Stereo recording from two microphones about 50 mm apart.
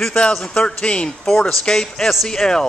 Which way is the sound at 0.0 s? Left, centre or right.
Centre.